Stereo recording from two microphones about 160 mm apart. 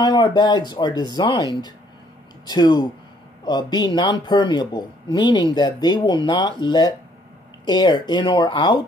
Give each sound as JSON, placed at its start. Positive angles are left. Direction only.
{"t": 0.0, "sound": "speech", "side_deg": 25}